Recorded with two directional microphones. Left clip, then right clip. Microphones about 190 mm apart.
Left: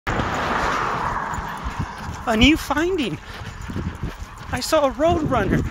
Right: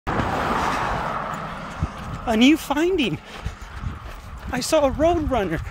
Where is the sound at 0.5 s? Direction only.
65° right (ahead or behind); by 1.7 s 45° right (ahead or behind).